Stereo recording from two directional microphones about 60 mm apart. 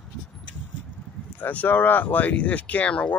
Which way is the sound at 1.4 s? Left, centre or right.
Left.